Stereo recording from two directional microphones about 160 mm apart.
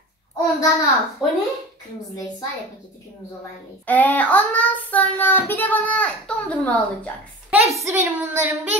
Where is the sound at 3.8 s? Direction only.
10° left (ahead or behind).